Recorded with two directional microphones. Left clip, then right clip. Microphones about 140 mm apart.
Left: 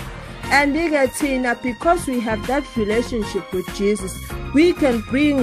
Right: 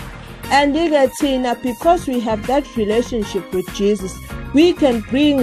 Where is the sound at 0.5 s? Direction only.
10° right (ahead or behind).